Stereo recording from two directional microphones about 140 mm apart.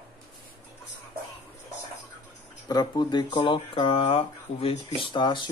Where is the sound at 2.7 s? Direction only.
30° left (ahead or behind).